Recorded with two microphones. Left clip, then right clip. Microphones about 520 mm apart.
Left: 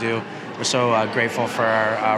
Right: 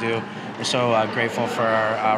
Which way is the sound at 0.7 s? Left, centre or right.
Centre.